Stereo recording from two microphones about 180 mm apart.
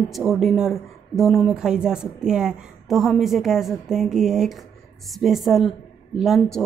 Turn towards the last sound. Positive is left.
turn(degrees=0)  # may be behind; listen again after turning